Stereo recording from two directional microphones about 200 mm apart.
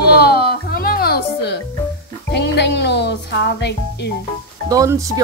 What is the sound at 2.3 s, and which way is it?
Speech, 55° left (ahead or behind).